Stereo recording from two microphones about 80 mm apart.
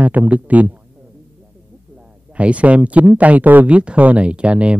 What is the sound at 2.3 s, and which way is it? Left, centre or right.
Speech, centre.